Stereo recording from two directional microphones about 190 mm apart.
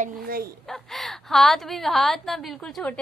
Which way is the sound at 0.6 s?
Centre (ahead or behind).